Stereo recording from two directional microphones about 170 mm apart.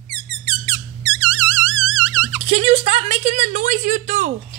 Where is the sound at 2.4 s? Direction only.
40° right (ahead or behind).